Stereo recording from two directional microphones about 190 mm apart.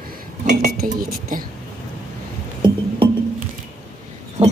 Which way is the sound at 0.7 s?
50° right (ahead or behind).